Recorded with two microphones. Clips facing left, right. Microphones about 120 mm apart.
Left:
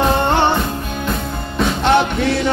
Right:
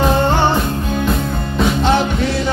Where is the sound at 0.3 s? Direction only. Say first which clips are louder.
Even; 60° left (ahead or behind).